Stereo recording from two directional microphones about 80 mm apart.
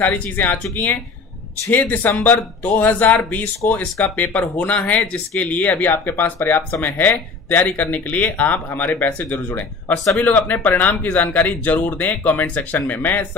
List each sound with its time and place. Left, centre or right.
0.0 s speech: left